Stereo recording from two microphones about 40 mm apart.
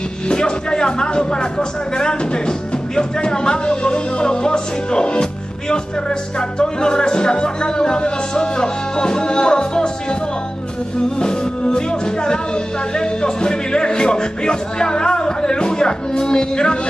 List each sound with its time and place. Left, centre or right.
0.3 s speech: left
6.6 s speech: left
11.1 s speech: left